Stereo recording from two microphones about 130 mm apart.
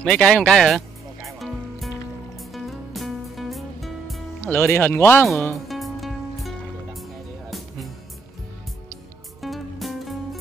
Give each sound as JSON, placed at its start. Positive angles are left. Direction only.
{"t": 0.0, "sound": "music", "side_deg": 5}
{"t": 4.4, "sound": "speech", "side_deg": 15}
{"t": 5.4, "sound": "music", "side_deg": 0}
{"t": 9.4, "sound": "music", "side_deg": 0}